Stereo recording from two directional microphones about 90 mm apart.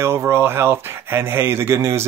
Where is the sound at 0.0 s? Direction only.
30° right (ahead or behind).